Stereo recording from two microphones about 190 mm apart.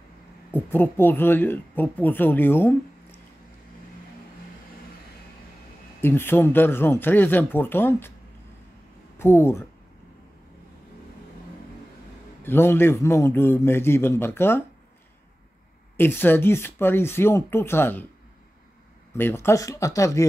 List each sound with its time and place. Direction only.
0.5 s speech: 10° left (ahead or behind)
5.9 s speech: 10° left (ahead or behind)
9.2 s speech: 15° left (ahead or behind)
12.4 s speech: 10° left (ahead or behind)
16.0 s speech: 10° left (ahead or behind)
19.1 s speech: 10° left (ahead or behind)